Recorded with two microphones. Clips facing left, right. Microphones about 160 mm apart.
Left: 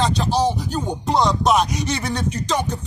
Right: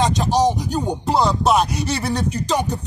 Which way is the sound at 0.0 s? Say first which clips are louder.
Right 2 dB; 15° right (ahead or behind).